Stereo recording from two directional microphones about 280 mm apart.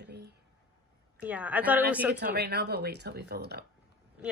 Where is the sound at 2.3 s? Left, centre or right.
Right.